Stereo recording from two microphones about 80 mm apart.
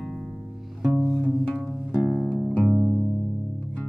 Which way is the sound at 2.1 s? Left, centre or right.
Centre.